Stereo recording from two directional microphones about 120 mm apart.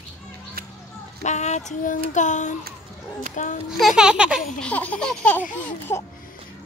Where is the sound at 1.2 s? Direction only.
75° left (ahead or behind).